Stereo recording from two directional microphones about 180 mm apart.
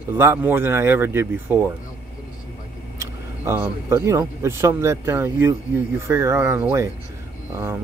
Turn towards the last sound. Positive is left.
turn(degrees=-15)  # may be behind; listen again after turning